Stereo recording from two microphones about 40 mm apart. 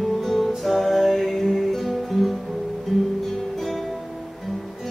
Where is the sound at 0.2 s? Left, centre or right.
Centre.